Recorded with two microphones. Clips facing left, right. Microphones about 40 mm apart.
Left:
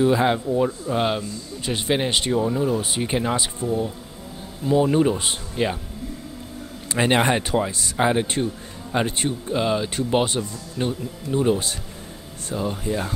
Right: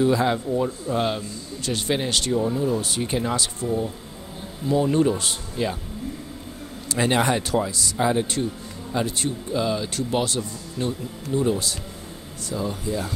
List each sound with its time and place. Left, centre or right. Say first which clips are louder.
0.0 s speech: left 2 dB; left
4.6 s speech: left 2 dB; centre
6.9 s speech: left 2 dB; left